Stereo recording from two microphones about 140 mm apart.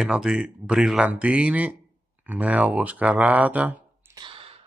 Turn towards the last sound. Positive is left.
turn(degrees=-40)  # may be behind; listen again after turning